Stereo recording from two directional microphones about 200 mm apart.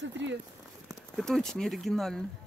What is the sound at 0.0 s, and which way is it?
Speech, 60° right (ahead or behind).